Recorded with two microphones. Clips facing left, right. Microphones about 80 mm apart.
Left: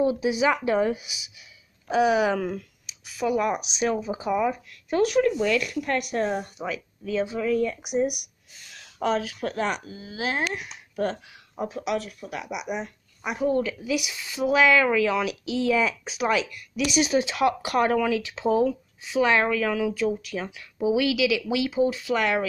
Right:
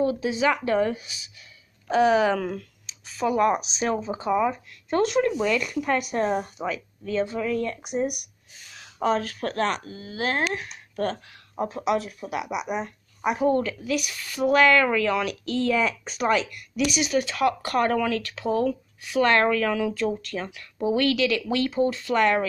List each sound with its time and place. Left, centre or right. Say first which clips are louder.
0.0 s speech: left 1 dB; centre
16.9 s speech: left 5 dB; left
17.2 s speech: left 1 dB; left; by 22.4 s centre